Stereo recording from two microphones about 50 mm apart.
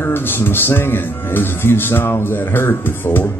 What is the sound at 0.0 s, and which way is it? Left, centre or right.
Speech, left.